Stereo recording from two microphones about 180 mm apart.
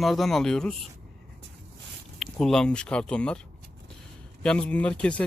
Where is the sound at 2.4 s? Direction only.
5° left (ahead or behind).